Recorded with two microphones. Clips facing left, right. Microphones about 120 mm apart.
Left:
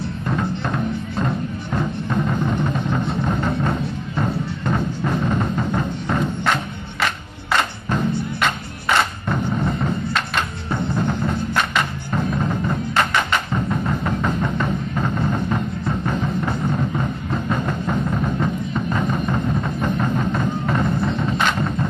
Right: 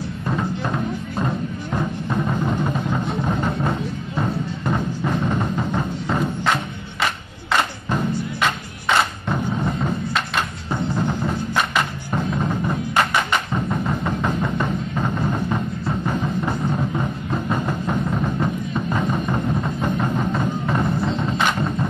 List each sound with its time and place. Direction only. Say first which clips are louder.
0.3 s music: even; centre (ahead or behind)
8.4 s music: even; centre (ahead or behind)